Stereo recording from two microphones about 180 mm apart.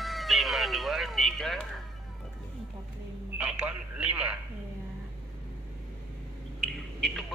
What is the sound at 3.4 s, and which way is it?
Speech, 5° right (ahead or behind).